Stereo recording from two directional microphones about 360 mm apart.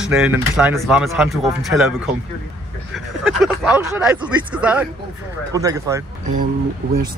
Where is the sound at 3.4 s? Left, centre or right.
Centre.